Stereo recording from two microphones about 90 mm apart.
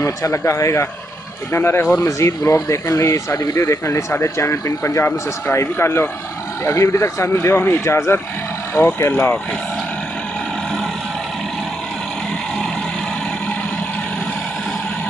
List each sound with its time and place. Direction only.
0.0 s speech: 35° left (ahead or behind)